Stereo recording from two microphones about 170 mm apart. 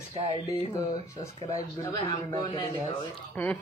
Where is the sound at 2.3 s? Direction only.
25° left (ahead or behind).